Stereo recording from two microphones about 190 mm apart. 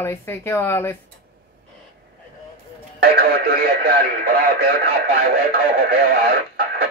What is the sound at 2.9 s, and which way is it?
Speech, 55° right (ahead or behind).